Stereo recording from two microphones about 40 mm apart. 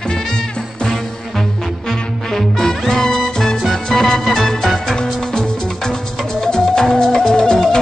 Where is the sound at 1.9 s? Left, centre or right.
Centre.